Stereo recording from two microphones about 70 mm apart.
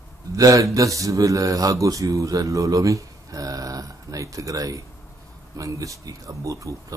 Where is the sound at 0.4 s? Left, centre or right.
Right.